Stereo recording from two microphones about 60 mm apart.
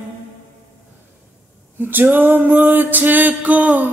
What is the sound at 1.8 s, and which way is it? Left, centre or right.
Music, right.